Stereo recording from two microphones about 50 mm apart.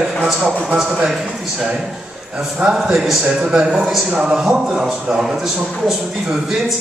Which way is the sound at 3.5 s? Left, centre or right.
Centre.